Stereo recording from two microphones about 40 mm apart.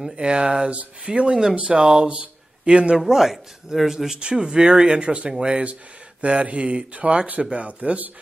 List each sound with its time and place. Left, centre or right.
0.0 s speech: centre
1.8 s speech: centre
2.0 s speech: right
3.1 s speech: centre; by 8.0 s right